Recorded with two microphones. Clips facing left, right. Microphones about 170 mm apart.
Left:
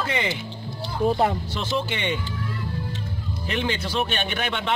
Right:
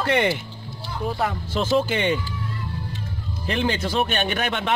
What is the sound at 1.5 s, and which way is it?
Speech, 45° right (ahead or behind).